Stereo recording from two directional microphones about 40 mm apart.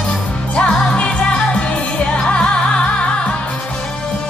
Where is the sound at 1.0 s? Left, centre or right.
Left.